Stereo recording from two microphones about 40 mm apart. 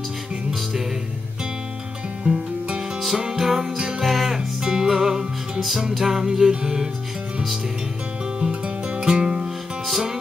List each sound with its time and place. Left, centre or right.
3.0 s music: centre
4.4 s music: centre
8.4 s music: right
9.8 s music: centre